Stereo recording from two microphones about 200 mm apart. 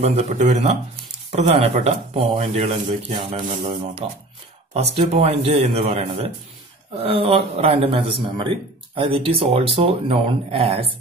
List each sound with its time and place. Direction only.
0.0 s speech: 35° right (ahead or behind)